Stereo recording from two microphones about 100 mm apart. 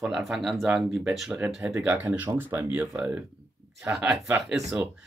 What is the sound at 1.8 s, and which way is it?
Speech, 15° right (ahead or behind).